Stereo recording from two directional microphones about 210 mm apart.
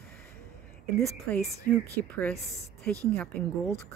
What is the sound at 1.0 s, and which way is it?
Speech, 5° left (ahead or behind).